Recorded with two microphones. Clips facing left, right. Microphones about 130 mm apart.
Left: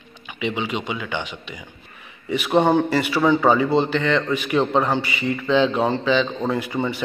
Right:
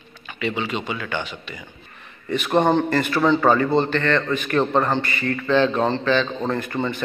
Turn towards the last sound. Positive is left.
turn(degrees=10)  # may be behind; listen again after turning